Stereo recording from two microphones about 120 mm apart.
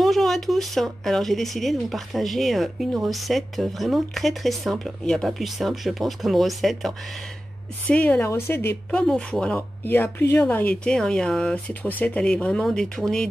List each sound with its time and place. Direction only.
0.0 s speech: centre (ahead or behind)
7.9 s speech: 15° left (ahead or behind)
9.0 s speech: 5° left (ahead or behind)